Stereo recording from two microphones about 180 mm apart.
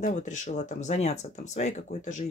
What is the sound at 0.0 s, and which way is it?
Speech, 40° left (ahead or behind).